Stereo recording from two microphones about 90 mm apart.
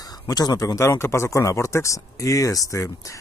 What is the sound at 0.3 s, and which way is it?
A man's voice, 45° left (ahead or behind).